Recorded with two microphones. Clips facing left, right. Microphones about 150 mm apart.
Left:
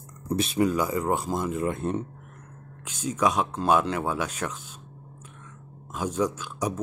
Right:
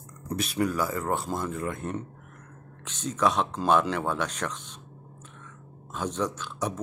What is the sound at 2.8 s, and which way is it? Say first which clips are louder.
Speech: left 1 dB; 10° left (ahead or behind).